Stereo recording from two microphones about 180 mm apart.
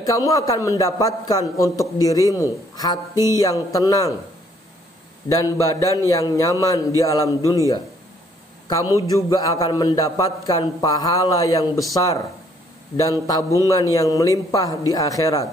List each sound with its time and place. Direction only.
0.0 s a man's voice: 20° left (ahead or behind)
5.4 s a man's voice: 20° left (ahead or behind)